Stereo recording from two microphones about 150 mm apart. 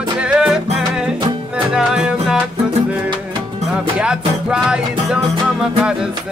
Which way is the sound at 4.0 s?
5° right (ahead or behind).